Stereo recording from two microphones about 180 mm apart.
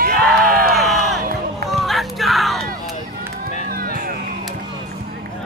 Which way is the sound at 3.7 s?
55° right (ahead or behind).